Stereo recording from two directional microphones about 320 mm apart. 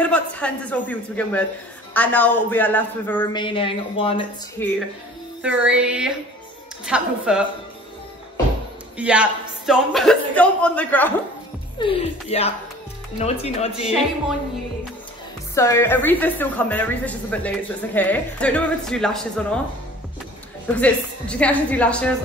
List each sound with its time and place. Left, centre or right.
0.0 s speech: centre
5.6 s a woman's voice: centre
8.9 s a woman's voice: centre
11.8 s speech: centre
15.5 s a woman's voice: centre
20.6 s a woman's voice: centre